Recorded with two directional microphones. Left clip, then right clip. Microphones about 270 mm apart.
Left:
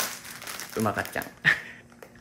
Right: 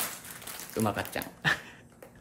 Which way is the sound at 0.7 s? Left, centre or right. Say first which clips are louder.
Left 3 dB; centre.